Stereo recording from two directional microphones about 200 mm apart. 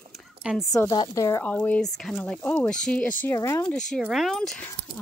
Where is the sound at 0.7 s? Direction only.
20° left (ahead or behind).